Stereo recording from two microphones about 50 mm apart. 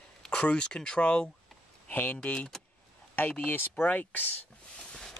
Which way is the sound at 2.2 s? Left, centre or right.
Left.